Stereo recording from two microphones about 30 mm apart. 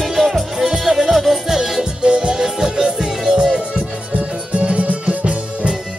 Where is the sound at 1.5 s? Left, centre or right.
Centre.